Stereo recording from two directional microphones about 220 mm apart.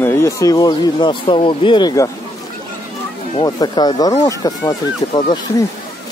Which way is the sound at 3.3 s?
20° left (ahead or behind).